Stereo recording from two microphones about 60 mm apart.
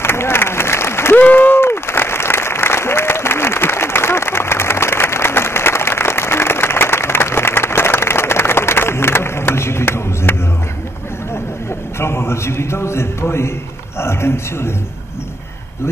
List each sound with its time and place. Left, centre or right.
0.0 s applause: left
1.2 s applause: left
12.0 s a sound: left
13.2 s a man's voice: left